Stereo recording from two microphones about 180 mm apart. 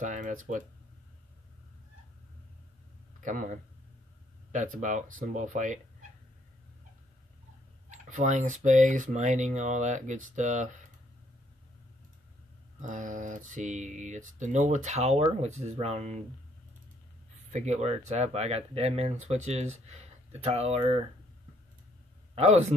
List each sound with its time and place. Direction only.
0.0 s speech: 45° right (ahead or behind)
3.2 s speech: 45° right (ahead or behind)
7.9 s speech: 40° right (ahead or behind)
12.8 s speech: 45° right (ahead or behind)
17.5 s speech: 40° right (ahead or behind)
22.3 s speech: 35° right (ahead or behind)